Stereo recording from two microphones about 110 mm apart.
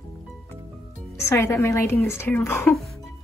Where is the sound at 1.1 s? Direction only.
25° left (ahead or behind).